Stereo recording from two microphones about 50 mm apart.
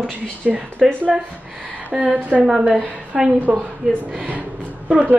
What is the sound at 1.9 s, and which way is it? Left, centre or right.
Speech, right.